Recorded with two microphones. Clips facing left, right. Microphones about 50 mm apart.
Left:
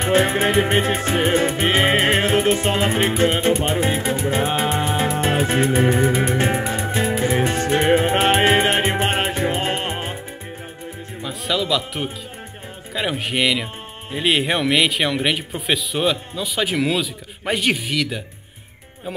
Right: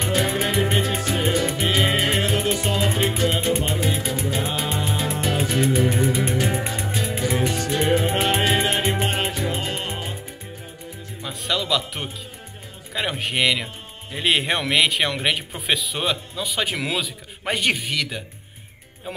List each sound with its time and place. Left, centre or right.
0.0 s music: left
11.2 s a man's voice: centre